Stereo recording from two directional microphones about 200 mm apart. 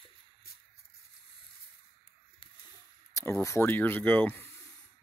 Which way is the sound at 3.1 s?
15° left (ahead or behind).